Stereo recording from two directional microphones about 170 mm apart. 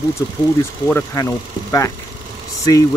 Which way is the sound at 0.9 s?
15° left (ahead or behind).